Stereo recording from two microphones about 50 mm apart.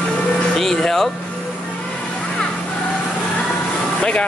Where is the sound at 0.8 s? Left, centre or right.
Centre.